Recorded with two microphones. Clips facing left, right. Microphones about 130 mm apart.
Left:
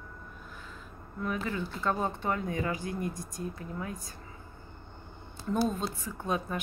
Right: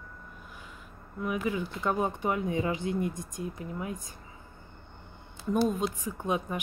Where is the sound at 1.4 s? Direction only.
15° right (ahead or behind).